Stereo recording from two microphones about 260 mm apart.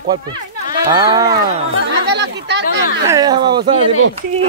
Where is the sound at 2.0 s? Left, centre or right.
Right.